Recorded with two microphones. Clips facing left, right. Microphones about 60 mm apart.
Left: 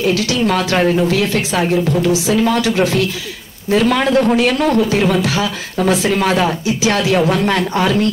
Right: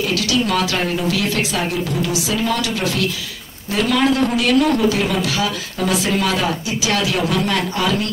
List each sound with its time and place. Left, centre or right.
0.0 s speech: left